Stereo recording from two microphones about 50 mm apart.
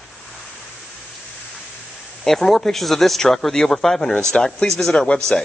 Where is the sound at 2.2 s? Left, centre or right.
Centre.